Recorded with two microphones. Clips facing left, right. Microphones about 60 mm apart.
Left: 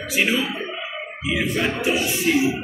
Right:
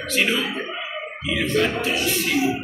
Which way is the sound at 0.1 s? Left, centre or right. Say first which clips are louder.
Left 1 dB; centre.